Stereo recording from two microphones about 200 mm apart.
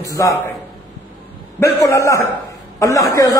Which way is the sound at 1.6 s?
15° left (ahead or behind).